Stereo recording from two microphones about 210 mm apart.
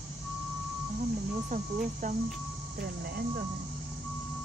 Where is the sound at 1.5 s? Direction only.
40° right (ahead or behind).